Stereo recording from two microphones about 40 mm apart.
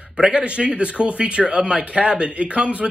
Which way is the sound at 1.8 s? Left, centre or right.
Right.